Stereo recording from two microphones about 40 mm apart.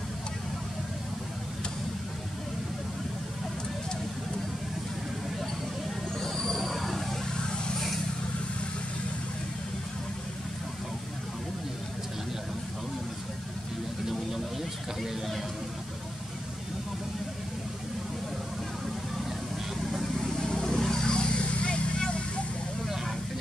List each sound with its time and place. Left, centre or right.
6.1 s train wheels squealing: centre
6.6 s train: centre
7.3 s vehicle: left
15.0 s a sound: centre
19.8 s vehicle: centre
20.2 s vehicle: centre
21.1 s vehicle: left